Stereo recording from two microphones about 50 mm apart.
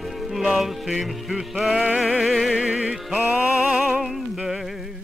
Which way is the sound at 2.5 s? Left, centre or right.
Centre.